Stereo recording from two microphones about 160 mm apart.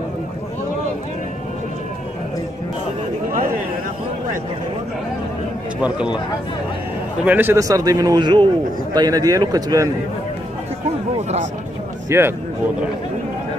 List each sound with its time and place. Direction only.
5.8 s speech: 5° right (ahead or behind)
7.2 s a man's voice: 15° right (ahead or behind)
11.1 s a sound: 40° right (ahead or behind)
12.1 s speech: 15° right (ahead or behind)